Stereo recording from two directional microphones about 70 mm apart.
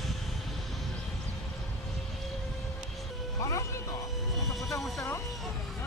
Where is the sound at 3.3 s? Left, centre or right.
Left.